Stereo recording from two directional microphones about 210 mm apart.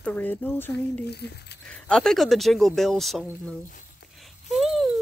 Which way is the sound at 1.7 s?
5° left (ahead or behind).